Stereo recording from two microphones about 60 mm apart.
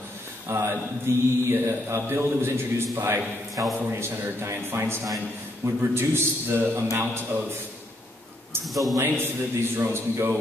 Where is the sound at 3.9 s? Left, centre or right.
Right.